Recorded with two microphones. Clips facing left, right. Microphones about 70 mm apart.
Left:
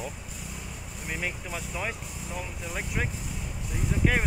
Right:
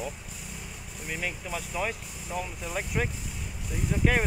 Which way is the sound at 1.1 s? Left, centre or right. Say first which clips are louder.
Even; centre.